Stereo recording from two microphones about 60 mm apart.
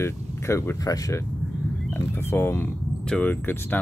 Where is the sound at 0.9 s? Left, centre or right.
Left.